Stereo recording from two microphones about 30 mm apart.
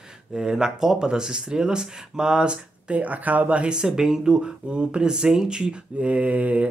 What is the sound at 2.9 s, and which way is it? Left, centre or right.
Speech, right.